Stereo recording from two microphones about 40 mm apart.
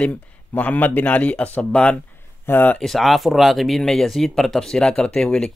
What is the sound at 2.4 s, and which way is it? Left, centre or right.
Speech, left.